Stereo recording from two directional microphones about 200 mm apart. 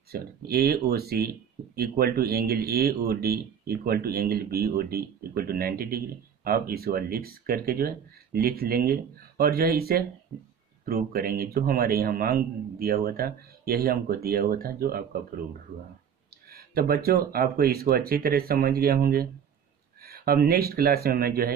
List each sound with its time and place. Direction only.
0.1 s speech: 50° right (ahead or behind)
16.4 s speech: 50° right (ahead or behind)